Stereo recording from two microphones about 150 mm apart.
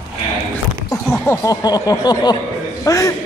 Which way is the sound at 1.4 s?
25° left (ahead or behind).